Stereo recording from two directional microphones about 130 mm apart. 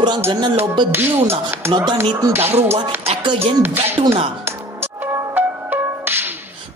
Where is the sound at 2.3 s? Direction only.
15° right (ahead or behind).